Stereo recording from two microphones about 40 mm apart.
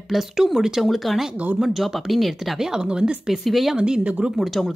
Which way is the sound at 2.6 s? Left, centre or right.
Centre.